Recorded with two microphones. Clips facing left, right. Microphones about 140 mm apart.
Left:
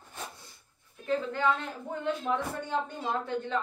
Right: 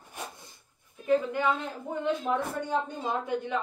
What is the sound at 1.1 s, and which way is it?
A woman's voice, 15° right (ahead or behind).